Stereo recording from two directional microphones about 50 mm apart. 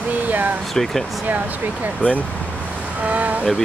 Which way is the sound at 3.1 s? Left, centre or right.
Right.